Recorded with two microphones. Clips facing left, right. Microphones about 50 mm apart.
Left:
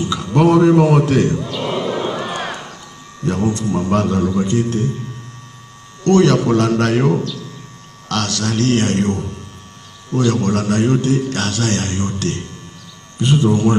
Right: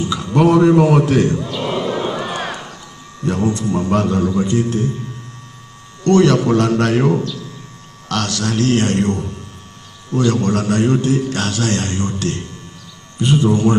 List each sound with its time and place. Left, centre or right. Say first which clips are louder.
0.0 s a man's voice: even; centre
1.7 s basketball bounce: even; centre
2.5 s a sound: even; centre
3.3 s a man's voice: even; centre
6.2 s a man's voice: even; centre
7.0 s speech: even; centre
8.1 s a man's voice: even; right